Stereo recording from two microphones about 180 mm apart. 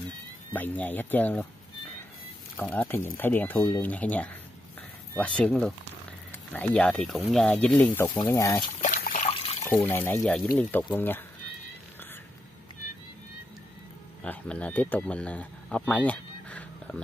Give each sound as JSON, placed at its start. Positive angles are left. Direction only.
{"t": 0.5, "sound": "speech", "side_deg": 10}
{"t": 2.5, "sound": "speech", "side_deg": 10}
{"t": 8.8, "sound": "water", "side_deg": 45}
{"t": 9.3, "sound": "water", "side_deg": 35}
{"t": 9.7, "sound": "speech", "side_deg": 10}
{"t": 14.2, "sound": "speech", "side_deg": 10}
{"t": 15.9, "sound": "a sound", "side_deg": 5}